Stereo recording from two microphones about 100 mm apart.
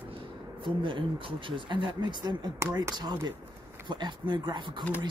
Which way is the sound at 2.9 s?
45° right (ahead or behind).